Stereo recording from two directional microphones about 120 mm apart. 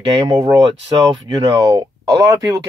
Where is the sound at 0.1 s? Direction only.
30° right (ahead or behind).